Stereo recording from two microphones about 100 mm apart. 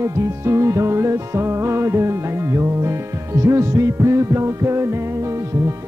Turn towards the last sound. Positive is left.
turn(degrees=-30)  # may be behind; listen again after turning